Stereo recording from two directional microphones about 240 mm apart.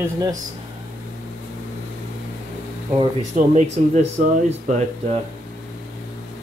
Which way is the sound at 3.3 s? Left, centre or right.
Right.